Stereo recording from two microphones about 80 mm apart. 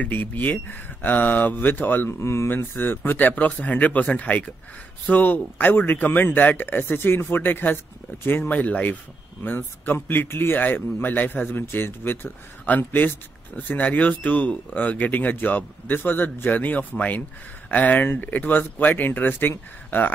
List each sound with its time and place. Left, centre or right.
0.0 s speech: left